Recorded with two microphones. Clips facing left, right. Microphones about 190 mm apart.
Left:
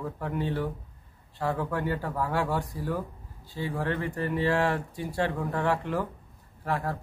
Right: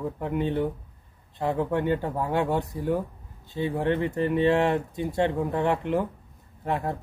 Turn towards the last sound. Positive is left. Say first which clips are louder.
# right 2 dB
turn(degrees=-20)  # may be behind; listen again after turning